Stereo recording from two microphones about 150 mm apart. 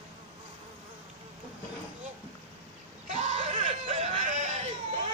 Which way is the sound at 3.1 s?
55° right (ahead or behind).